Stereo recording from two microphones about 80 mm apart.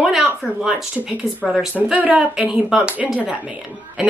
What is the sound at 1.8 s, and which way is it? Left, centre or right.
Speech, centre.